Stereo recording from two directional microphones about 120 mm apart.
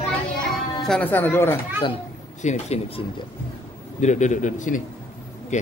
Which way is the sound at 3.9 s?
80° left.